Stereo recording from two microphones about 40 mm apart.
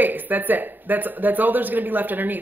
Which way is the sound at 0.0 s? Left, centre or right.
Right.